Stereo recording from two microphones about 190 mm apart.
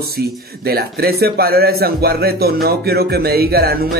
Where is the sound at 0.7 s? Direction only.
55° right (ahead or behind).